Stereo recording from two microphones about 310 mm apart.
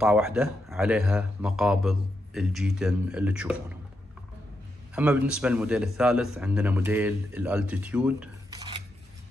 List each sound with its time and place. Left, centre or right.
0.0 s a man's voice: centre
4.9 s a man's voice: centre